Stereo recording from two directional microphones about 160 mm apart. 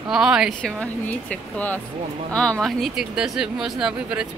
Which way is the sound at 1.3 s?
10° left (ahead or behind).